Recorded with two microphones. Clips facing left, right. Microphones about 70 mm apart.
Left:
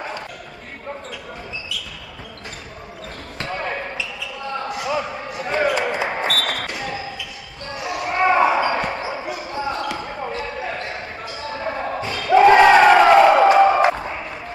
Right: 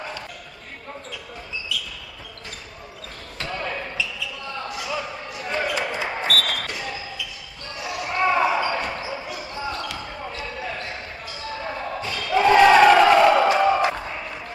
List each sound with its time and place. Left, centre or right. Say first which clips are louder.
3.3 s basketball bounce: left 3 dB; left
12.6 s crowd: left 2 dB; centre
13.6 s a sound: left 5 dB; left